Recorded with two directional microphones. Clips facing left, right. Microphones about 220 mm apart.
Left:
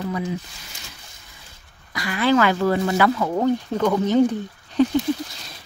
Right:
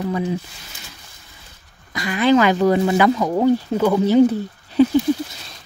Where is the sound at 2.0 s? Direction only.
20° right (ahead or behind).